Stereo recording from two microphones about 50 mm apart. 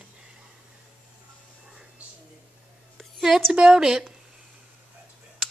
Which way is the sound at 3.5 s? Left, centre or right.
Centre.